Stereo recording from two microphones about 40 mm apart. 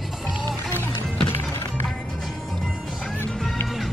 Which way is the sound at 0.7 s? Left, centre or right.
Left.